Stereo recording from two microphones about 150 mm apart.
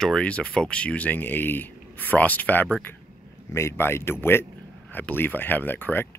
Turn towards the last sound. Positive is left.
turn(degrees=10)  # may be behind; listen again after turning